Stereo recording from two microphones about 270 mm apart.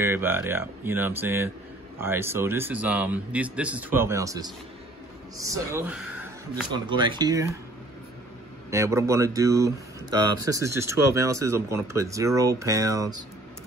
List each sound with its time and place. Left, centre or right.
0.0 s a man's voice: centre
8.6 s a man's voice: centre